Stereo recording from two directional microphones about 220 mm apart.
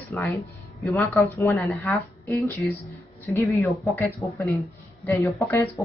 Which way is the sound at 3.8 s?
15° left (ahead or behind).